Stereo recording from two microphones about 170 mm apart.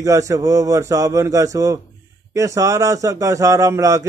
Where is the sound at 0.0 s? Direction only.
20° right (ahead or behind).